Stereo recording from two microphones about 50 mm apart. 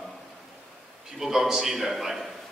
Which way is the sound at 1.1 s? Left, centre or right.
Centre.